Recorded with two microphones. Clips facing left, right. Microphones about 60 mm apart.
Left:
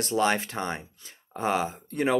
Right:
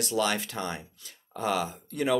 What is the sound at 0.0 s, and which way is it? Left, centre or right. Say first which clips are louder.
Speech: left 3 dB; left.